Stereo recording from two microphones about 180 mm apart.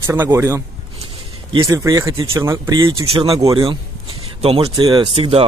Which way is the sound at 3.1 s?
30° right (ahead or behind).